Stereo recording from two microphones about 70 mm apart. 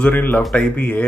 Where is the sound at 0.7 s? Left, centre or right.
Left.